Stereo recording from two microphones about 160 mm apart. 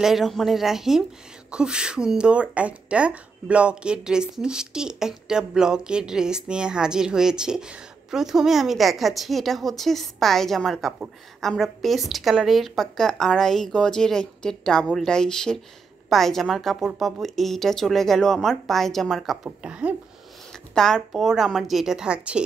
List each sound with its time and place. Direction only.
0.0 s speech: centre (ahead or behind)